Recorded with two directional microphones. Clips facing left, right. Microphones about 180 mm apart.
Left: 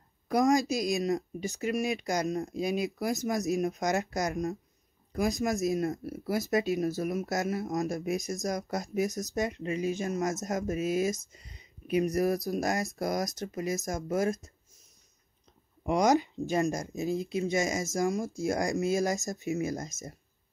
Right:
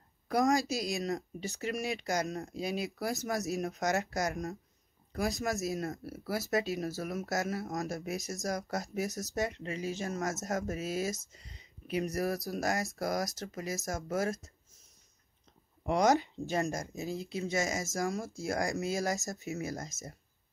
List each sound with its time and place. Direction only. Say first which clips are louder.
0.3 s speech: left 3 dB; 20° left (ahead or behind)
15.9 s speech: left 2 dB; 15° left (ahead or behind)